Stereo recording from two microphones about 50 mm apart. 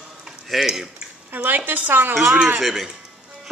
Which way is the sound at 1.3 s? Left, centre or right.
Right.